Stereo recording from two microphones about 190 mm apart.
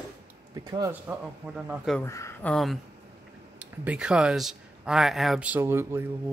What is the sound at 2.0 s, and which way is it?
Speech, 15° left (ahead or behind).